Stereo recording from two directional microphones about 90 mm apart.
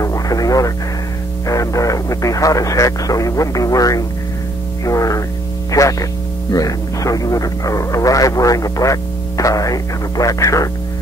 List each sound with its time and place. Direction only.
0.0 s radio: 40° left (ahead or behind)
1.5 s speech: 40° left (ahead or behind)